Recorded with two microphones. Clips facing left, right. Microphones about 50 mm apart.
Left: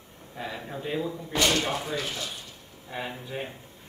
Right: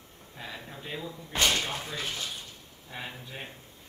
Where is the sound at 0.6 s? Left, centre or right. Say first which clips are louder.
Left 7 dB; centre.